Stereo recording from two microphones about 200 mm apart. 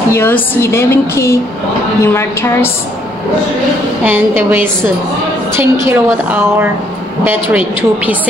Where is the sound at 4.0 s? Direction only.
10° right (ahead or behind).